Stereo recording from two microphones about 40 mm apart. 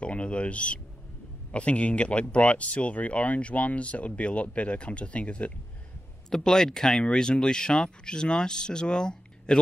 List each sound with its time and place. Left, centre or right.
0.0 s speech: left
6.3 s speech: centre